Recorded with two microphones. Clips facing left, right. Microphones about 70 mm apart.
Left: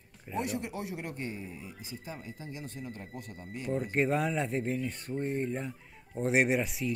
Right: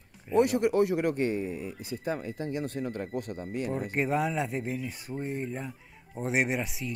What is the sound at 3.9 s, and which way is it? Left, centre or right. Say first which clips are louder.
Speech: even; centre.